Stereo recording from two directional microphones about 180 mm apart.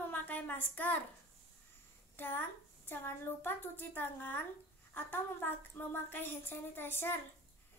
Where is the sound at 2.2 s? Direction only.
10° left (ahead or behind).